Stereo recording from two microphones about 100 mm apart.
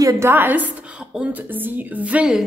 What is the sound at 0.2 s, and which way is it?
A woman's voice, 20° right (ahead or behind).